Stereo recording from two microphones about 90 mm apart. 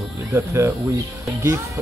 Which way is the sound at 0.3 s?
30° right (ahead or behind).